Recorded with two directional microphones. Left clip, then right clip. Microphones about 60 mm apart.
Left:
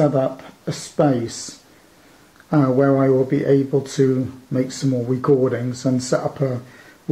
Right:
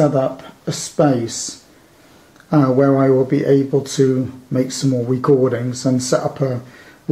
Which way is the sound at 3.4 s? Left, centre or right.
Left.